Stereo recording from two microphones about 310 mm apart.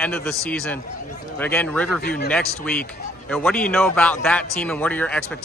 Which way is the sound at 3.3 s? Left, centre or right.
Centre.